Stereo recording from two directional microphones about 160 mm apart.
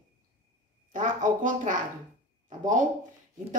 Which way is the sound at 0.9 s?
55° right (ahead or behind).